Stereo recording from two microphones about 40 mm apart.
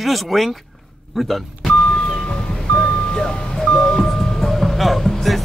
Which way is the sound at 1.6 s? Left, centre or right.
Centre.